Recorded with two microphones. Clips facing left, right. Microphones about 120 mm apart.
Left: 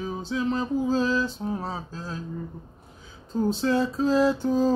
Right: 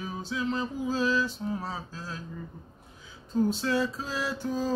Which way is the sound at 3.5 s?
25° left (ahead or behind).